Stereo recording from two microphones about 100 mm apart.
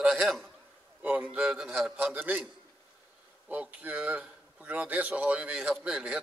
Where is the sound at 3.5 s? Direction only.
15° right (ahead or behind).